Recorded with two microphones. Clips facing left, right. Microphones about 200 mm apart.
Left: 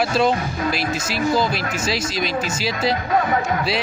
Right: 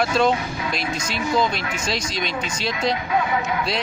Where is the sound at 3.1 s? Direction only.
45° left (ahead or behind).